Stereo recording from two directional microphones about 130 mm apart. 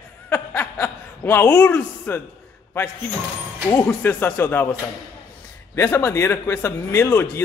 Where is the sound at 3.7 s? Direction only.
15° left (ahead or behind).